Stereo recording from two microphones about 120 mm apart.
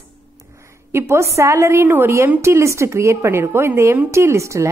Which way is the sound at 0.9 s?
20° right (ahead or behind).